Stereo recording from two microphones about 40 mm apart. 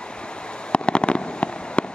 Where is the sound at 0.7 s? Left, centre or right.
Left.